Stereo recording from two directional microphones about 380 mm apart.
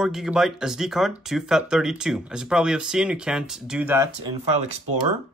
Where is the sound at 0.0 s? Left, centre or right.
Centre.